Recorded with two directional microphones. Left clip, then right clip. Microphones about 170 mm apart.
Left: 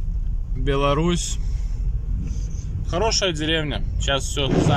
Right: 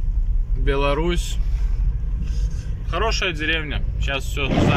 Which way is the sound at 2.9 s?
10° left (ahead or behind).